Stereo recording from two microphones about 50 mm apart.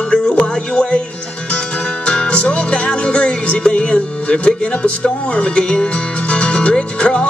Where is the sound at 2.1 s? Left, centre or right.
Left.